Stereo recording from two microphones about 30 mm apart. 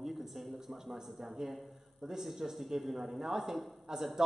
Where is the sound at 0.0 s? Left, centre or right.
Centre.